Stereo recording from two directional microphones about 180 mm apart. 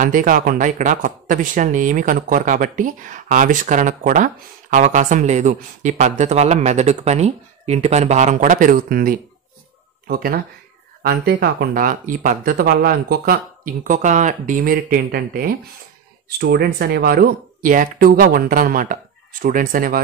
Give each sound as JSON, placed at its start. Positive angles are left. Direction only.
{"t": 0.0, "sound": "speech", "side_deg": -50}